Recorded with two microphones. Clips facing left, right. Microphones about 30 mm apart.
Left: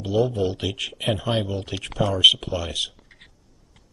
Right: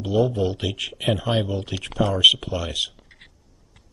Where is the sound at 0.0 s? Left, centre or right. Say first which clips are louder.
Right 1 dB; centre.